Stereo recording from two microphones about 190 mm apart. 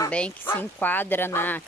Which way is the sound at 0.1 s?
5° left (ahead or behind).